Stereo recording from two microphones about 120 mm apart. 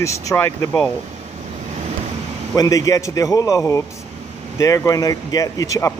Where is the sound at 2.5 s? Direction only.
30° left (ahead or behind).